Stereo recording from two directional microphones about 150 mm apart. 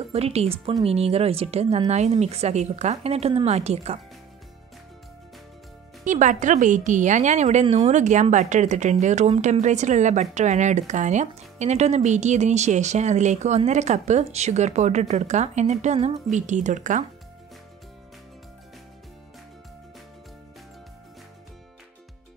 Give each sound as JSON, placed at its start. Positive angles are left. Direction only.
{"t": 0.1, "sound": "speech", "side_deg": -45}
{"t": 6.0, "sound": "a woman's voice", "side_deg": -55}